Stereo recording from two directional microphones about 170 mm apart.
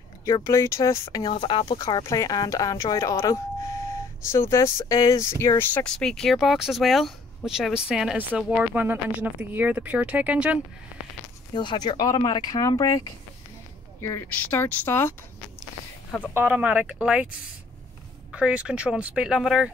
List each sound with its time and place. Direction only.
0.2 s speech: 15° left (ahead or behind)
1.2 s speech: 30° left (ahead or behind); by 10.6 s 5° right (ahead or behind)
11.5 s speech: 25° left (ahead or behind)
14.0 s speech: 15° left (ahead or behind)
16.3 s speech: 10° right (ahead or behind)
18.3 s speech: 5° right (ahead or behind)